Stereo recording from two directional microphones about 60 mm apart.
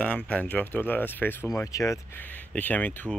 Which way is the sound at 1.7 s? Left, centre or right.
Left.